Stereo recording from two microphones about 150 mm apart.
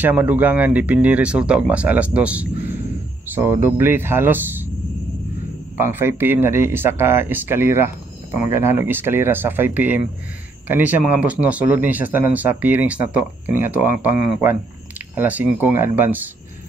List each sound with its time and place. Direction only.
0.0 s speech: 10° right (ahead or behind)
5.8 s speech: 15° right (ahead or behind)